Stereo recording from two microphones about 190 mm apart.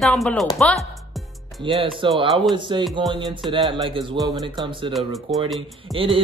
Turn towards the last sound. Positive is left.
turn(degrees=-25)  # may be behind; listen again after turning